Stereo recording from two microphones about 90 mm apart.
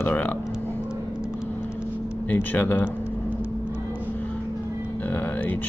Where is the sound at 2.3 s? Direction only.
20° left (ahead or behind).